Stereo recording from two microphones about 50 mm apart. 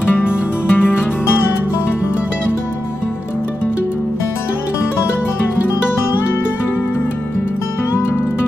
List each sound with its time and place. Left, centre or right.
0.2 s music: left